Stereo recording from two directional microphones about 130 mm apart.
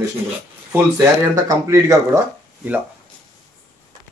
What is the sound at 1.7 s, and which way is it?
Speech, 20° right (ahead or behind).